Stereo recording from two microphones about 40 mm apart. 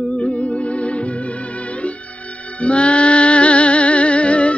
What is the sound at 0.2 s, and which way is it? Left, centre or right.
Music, left.